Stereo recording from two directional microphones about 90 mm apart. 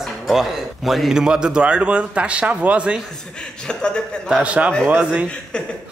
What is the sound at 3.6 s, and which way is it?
Speech, 10° left (ahead or behind).